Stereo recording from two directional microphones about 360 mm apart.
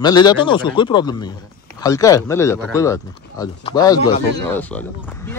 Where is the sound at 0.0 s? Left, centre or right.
Centre.